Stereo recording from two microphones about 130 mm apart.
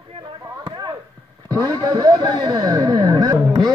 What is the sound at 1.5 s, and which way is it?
Speech, 30° right (ahead or behind).